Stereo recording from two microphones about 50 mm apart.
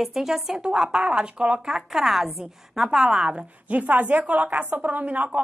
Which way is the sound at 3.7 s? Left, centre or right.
Right.